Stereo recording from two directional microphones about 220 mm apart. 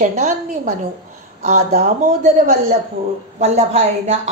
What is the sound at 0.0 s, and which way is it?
A woman's voice, 35° right (ahead or behind).